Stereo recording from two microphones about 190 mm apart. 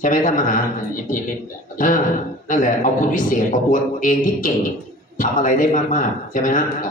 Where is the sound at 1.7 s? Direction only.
45° left (ahead or behind).